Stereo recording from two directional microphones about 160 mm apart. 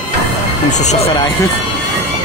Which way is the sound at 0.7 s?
45° left (ahead or behind).